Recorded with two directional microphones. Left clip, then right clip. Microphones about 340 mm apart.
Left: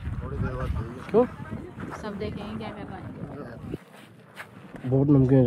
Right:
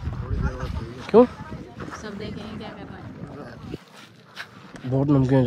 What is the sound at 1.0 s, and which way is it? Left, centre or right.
Bee, right.